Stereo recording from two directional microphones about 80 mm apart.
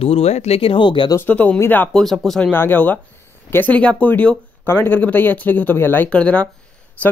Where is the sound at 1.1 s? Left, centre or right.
Left.